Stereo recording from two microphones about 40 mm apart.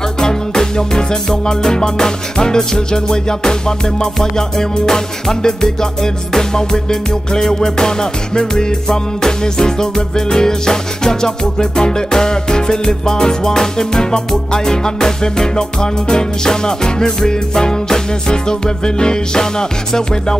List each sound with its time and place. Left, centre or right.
0.2 s music: centre